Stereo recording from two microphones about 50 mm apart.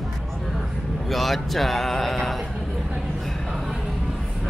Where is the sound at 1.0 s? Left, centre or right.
Centre.